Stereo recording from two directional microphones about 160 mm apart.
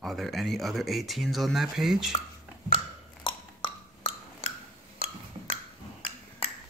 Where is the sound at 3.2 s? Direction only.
30° left (ahead or behind).